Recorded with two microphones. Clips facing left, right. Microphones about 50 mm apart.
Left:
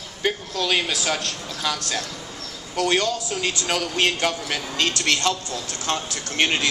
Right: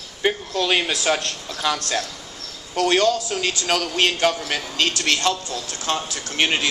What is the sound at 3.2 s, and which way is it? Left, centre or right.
Speech, right.